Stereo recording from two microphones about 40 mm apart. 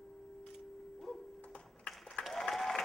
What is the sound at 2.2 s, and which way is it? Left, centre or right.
Applause, centre.